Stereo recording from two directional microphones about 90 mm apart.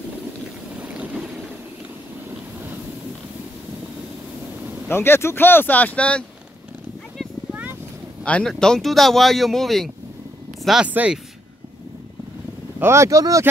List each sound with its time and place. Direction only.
0.7 s boat: 10° right (ahead or behind)
4.8 s speech: 25° left (ahead or behind)
8.2 s speech: 10° left (ahead or behind)
10.9 s speech: 15° right (ahead or behind)
12.7 s speech: 30° right (ahead or behind)